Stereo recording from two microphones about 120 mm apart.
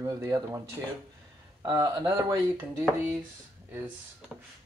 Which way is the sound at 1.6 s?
35° right (ahead or behind).